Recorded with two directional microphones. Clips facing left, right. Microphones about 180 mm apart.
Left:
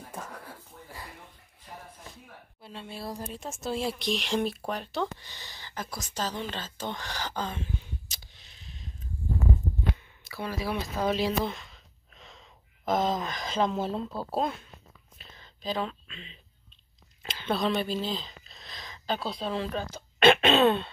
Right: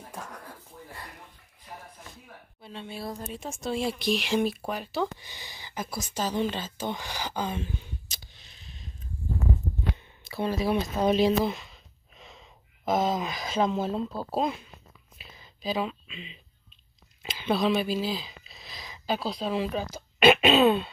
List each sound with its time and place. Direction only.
0.1 s a sound: 5° left (ahead or behind)
2.6 s speech: centre (ahead or behind)
9.9 s speech: 25° right (ahead or behind)
11.4 s speech: 5° right (ahead or behind)
15.1 s whispering: 10° right (ahead or behind)
17.2 s speech: 5° right (ahead or behind)